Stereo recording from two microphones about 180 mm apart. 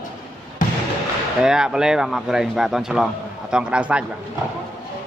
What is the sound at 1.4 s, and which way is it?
Speech, 5° right (ahead or behind).